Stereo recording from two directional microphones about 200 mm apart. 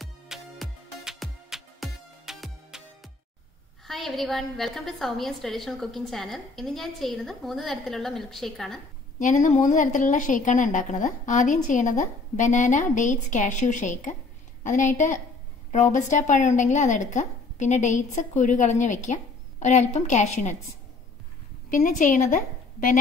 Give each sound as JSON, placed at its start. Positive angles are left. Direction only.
{"t": 0.0, "sound": "music", "side_deg": 0}
{"t": 3.8, "sound": "a woman's voice", "side_deg": 0}
{"t": 9.2, "sound": "a woman's voice", "side_deg": 40}
{"t": 21.6, "sound": "a woman's voice", "side_deg": 40}